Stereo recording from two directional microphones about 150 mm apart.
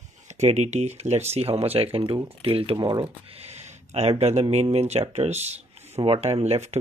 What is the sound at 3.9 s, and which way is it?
Speech, 45° right (ahead or behind).